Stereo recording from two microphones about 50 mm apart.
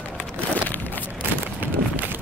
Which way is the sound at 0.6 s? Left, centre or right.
Left.